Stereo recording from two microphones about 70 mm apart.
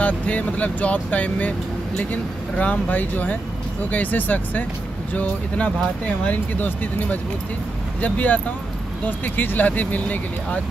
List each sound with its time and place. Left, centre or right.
0.0 s speech: left
2.5 s speech: left